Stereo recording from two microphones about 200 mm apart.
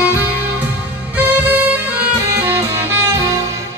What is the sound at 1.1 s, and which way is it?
Music, 10° right (ahead or behind).